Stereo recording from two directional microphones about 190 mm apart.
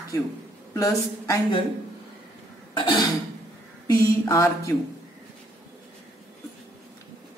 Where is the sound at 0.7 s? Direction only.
15° left (ahead or behind).